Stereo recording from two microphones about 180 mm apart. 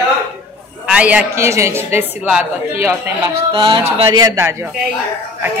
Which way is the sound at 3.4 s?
30° right (ahead or behind).